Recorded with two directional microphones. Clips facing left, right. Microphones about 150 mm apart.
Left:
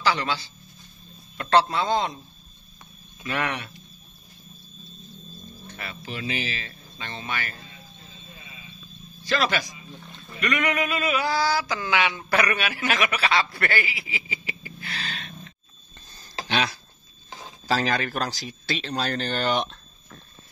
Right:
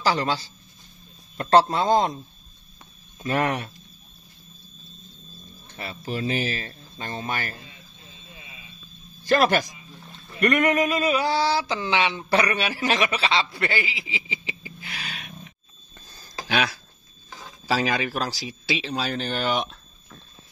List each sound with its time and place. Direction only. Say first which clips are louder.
0.0 s a man's voice: right 2 dB; 40° right (ahead or behind)
3.2 s speech: right 5 dB; 40° right (ahead or behind)
5.8 s speech: right 6 dB; 35° right (ahead or behind)
9.2 s a man's voice: right 5 dB; 50° right (ahead or behind)
10.4 s a sound: right 5 dB; 50° right (ahead or behind); by 16.8 s 5° right (ahead or behind)
17.6 s a man's voice: even; 5° right (ahead or behind)